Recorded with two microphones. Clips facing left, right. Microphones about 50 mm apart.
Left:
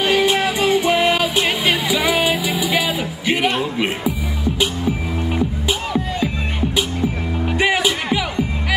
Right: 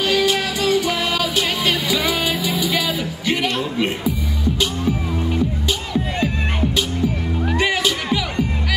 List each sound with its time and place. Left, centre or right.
0.0 s music: left
7.4 s music: centre